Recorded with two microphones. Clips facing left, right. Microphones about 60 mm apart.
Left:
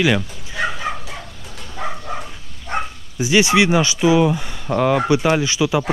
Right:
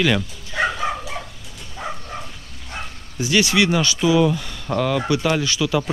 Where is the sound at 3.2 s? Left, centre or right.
Centre.